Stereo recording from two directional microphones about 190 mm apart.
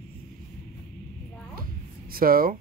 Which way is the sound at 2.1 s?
50° right (ahead or behind).